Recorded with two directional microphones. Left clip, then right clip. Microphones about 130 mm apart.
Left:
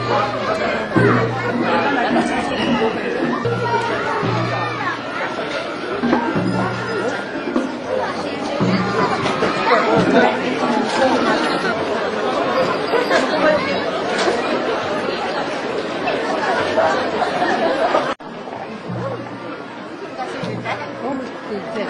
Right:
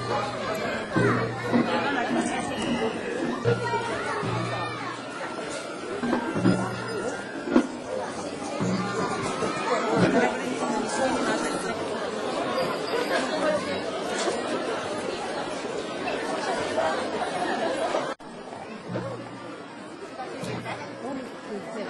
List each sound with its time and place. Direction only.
0.1 s music: 45° right (ahead or behind)
1.7 s chatter: 40° right (ahead or behind)
3.9 s music: 45° right (ahead or behind)
6.0 s music: 40° right (ahead or behind)
8.5 s chatter: 40° right (ahead or behind)
16.1 s chatter: 45° right (ahead or behind)